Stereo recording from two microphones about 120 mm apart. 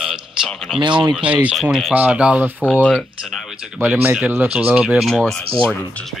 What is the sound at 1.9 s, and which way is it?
Speech, 10° right (ahead or behind).